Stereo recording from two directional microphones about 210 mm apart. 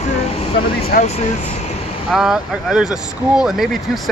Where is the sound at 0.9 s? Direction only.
45° left (ahead or behind).